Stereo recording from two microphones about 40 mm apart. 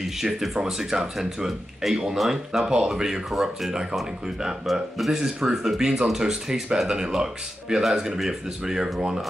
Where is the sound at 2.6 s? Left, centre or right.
Centre.